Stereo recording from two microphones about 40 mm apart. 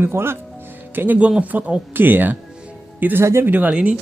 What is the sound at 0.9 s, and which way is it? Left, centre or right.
Speech, right.